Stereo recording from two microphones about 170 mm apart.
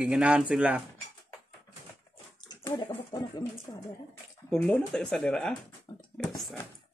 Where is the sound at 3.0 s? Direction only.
25° left (ahead or behind).